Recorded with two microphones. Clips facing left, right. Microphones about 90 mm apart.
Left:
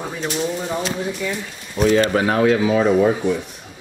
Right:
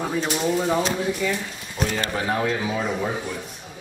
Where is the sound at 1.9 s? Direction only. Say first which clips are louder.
Left 9 dB; 80° left.